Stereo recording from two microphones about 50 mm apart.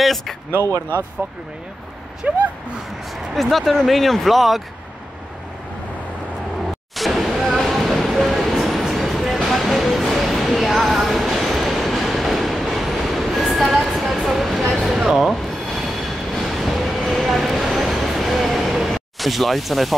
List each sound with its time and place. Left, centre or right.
0.0 s speech: centre
2.2 s speech: right
3.3 s speech: centre
7.0 s a sound: centre
8.6 s music: centre
14.2 s vehicle: centre
15.0 s a sound: centre
16.4 s train: centre